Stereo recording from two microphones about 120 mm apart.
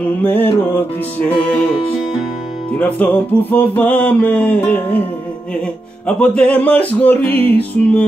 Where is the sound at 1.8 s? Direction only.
45° left (ahead or behind).